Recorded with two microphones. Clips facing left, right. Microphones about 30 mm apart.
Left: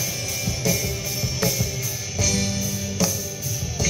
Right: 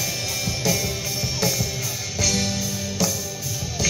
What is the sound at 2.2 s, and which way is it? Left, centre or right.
Music, right.